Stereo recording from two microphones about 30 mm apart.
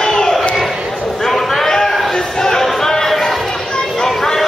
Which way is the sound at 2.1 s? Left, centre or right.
Centre.